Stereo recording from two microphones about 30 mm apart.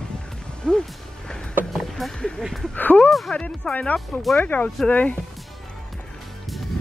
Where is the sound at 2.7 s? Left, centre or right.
Left.